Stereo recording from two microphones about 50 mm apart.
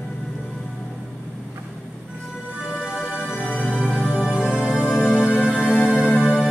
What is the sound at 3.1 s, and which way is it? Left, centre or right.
Music, left.